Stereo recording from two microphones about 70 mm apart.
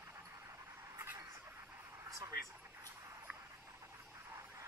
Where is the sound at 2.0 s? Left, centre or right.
Right.